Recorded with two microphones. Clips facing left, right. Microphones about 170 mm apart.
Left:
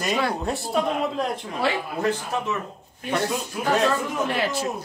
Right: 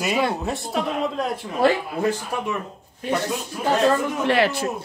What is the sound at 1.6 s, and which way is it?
Speech, 45° right (ahead or behind).